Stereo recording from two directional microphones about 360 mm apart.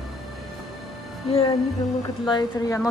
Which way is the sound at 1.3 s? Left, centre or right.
Centre.